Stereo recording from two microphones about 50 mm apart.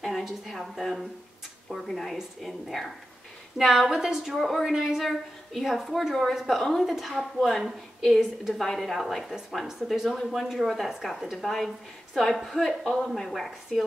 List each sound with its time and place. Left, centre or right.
0.2 s a woman's voice: centre